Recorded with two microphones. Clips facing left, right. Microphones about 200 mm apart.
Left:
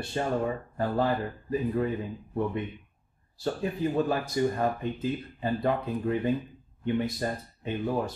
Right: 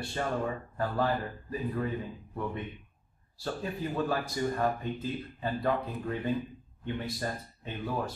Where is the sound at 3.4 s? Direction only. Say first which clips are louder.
Left 6 dB; 20° left (ahead or behind).